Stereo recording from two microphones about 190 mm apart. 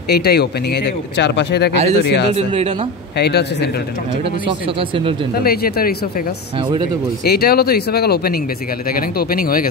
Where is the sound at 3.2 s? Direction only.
60° left (ahead or behind).